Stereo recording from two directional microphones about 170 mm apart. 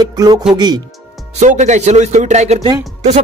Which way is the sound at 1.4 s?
45° right (ahead or behind).